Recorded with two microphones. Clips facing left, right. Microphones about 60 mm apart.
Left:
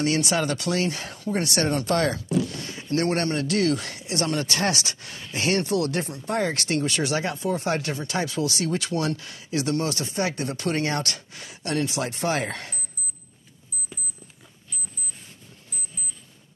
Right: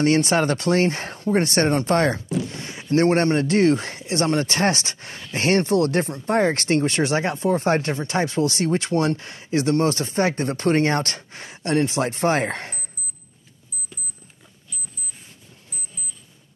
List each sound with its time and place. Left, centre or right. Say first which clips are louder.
0.0 s speech: right 5 dB; right